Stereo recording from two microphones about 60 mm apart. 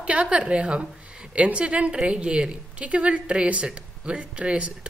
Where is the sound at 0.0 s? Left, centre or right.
Centre.